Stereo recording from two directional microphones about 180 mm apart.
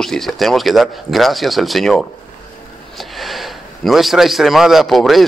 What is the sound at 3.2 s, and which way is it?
A man's voice, centre (ahead or behind).